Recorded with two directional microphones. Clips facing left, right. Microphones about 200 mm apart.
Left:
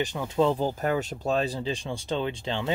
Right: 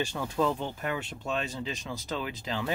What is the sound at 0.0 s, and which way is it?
Speech, 20° left (ahead or behind).